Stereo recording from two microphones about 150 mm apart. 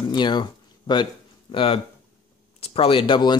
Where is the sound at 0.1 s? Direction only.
30° left (ahead or behind).